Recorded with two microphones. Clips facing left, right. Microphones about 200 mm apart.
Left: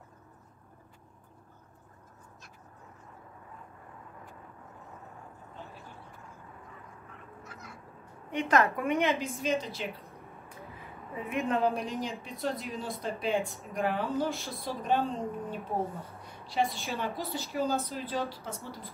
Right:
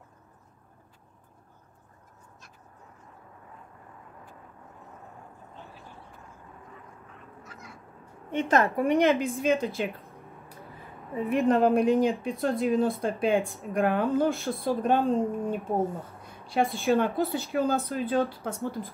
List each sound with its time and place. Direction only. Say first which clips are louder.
8.3 s a woman's voice: right 2 dB; 25° right (ahead or behind)
9.0 s a woman's voice: right 6 dB; 55° right (ahead or behind)
11.2 s a woman's voice: right 8 dB; 35° right (ahead or behind)
11.5 s a woman's voice: right 8 dB; 55° right (ahead or behind)